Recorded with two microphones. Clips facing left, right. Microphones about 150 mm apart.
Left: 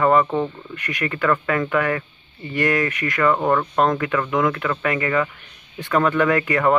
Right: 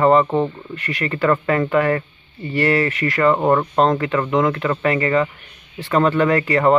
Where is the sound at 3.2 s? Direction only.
25° right (ahead or behind).